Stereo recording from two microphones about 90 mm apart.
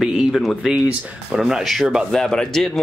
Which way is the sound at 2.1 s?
5° left (ahead or behind).